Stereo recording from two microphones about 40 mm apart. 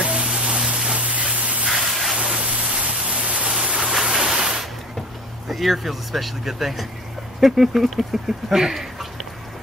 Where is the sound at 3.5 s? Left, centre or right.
Centre.